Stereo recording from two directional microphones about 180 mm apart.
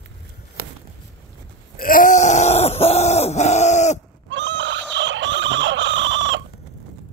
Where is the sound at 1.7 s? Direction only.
50° left (ahead or behind).